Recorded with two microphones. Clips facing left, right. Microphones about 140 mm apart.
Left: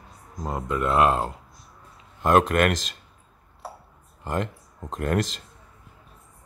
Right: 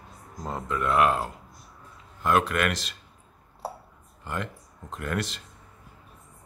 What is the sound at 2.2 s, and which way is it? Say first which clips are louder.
Speech: left 5 dB; 40° left (ahead or behind).